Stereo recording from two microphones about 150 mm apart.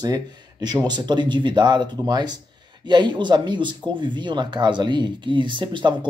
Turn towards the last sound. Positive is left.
turn(degrees=-35)  # may be behind; listen again after turning